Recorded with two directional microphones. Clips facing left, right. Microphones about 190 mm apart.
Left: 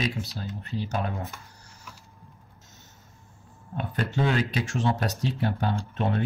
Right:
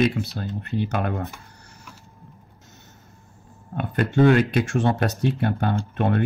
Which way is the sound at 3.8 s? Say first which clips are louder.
Right 8 dB; 55° right (ahead or behind).